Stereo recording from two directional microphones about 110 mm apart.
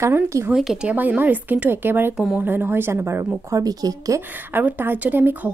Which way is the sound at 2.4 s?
20° right (ahead or behind).